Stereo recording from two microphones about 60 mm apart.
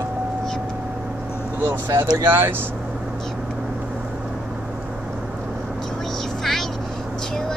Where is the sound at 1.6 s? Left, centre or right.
Right.